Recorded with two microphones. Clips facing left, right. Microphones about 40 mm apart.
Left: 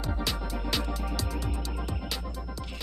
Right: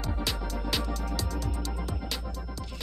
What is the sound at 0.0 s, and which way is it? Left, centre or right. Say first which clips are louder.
Music: even; centre.